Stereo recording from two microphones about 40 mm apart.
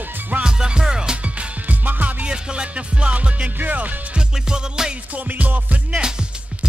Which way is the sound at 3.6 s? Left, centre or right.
Right.